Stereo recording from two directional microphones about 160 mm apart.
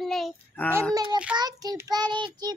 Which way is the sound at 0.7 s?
20° right (ahead or behind).